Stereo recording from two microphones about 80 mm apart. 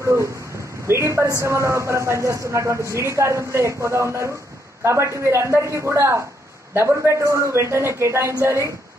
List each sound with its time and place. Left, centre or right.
0.0 s speech: right